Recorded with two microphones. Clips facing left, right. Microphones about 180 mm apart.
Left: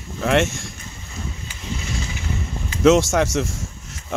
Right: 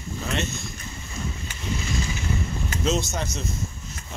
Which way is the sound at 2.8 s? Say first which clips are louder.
Left 12 dB; 85° left.